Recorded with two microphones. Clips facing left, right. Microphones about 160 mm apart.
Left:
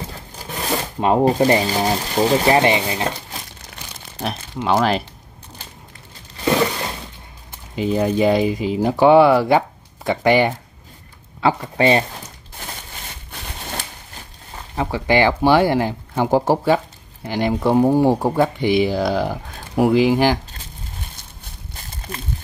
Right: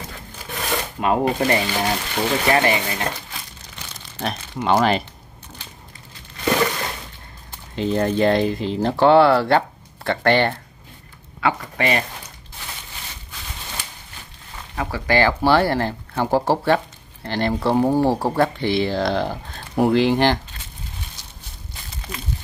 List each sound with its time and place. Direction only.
0.1 s speech: 35° left (ahead or behind)
4.2 s speech: centre (ahead or behind)
7.7 s speech: 10° left (ahead or behind)
11.4 s speech: 25° left (ahead or behind)
13.3 s a sound: 55° left (ahead or behind)
14.5 s speech: 20° left (ahead or behind)